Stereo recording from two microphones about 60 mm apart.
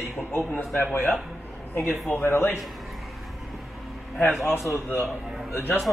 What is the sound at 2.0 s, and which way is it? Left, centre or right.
Speech, left.